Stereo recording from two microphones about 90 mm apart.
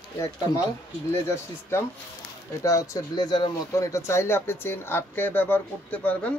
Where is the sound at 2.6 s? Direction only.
40° left (ahead or behind).